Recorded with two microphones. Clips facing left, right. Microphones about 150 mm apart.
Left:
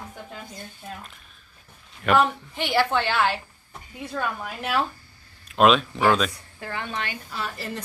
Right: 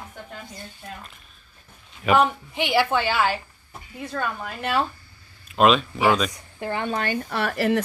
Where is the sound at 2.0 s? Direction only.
10° right (ahead or behind).